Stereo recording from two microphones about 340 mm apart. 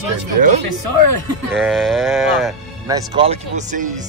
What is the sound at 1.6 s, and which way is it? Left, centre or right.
Livestock, centre.